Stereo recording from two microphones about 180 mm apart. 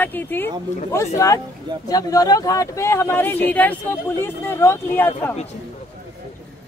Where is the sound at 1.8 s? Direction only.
20° left (ahead or behind).